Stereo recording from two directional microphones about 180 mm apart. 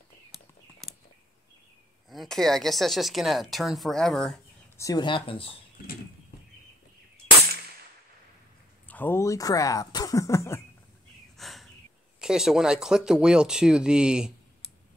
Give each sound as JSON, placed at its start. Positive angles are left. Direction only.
{"t": 2.0, "sound": "speech", "side_deg": 0}
{"t": 4.7, "sound": "speech", "side_deg": 20}
{"t": 8.8, "sound": "speech", "side_deg": 10}
{"t": 11.3, "sound": "a sound", "side_deg": 0}
{"t": 12.2, "sound": "speech", "side_deg": -5}